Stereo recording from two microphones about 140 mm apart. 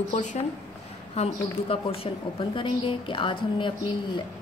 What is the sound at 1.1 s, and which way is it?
A woman's voice, 45° left (ahead or behind).